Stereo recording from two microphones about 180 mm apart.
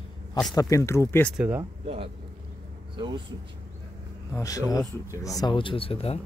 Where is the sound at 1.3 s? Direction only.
10° right (ahead or behind).